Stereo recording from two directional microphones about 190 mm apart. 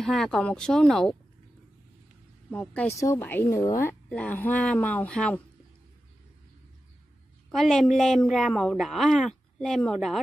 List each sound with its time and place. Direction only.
0.0 s a woman's voice: 5° left (ahead or behind)
2.5 s speech: 5° left (ahead or behind)
7.5 s a woman's voice: centre (ahead or behind)